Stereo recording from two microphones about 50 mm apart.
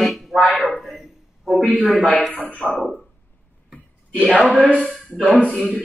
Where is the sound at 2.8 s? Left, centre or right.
Centre.